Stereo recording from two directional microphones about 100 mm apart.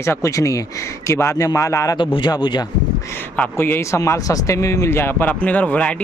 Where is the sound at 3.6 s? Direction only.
25° left (ahead or behind).